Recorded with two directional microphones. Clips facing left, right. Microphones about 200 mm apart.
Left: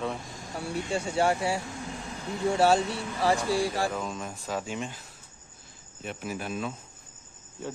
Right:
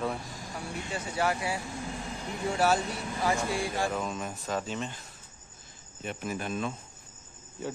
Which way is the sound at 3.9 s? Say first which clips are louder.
Right 1 dB; centre (ahead or behind).